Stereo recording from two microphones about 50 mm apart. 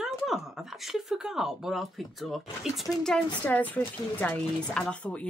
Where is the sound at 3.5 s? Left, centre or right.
Left.